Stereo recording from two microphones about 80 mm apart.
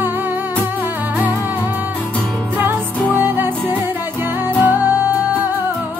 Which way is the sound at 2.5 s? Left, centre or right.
Right.